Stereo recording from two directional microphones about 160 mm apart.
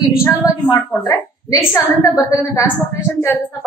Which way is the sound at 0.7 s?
20° left (ahead or behind).